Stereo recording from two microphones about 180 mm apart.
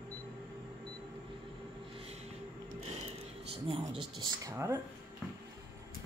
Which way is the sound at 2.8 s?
35° right (ahead or behind).